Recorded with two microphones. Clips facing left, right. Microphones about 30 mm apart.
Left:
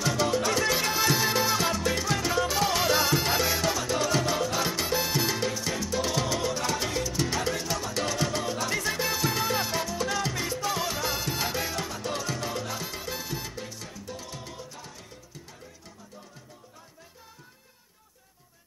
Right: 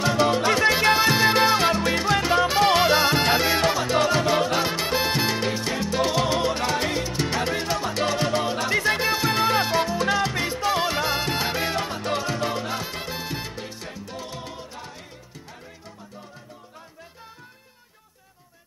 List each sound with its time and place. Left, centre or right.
0.0 s music: right
0.9 s salsa music: right
3.3 s music: right
13.1 s salsa music: right
13.8 s music: right